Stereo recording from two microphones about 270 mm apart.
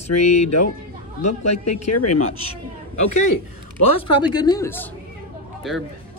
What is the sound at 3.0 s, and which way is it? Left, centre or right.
Speech, left.